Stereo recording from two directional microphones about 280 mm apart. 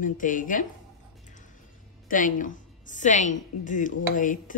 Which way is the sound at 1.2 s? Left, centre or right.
Left.